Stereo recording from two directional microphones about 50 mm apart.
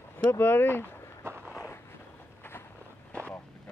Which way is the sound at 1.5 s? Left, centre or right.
Left.